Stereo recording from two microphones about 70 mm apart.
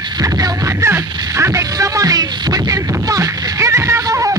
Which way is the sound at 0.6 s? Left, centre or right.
Right.